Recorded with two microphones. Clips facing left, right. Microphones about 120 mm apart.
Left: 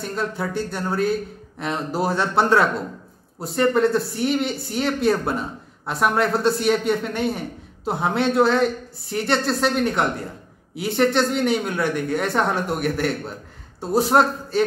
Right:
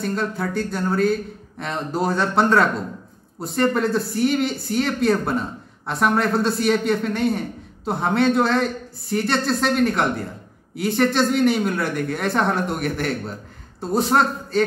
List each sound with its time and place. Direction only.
0.0 s a woman's voice: centre (ahead or behind)